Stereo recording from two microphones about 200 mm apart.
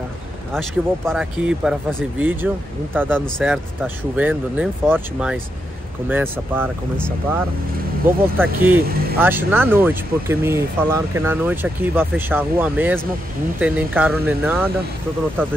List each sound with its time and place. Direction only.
0.5 s speech: centre (ahead or behind)
3.2 s speech: centre (ahead or behind)
8.0 s speech: 10° right (ahead or behind)